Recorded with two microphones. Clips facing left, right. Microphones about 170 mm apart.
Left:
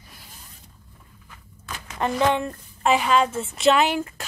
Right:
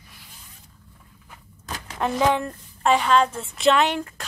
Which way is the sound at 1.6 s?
40° right (ahead or behind).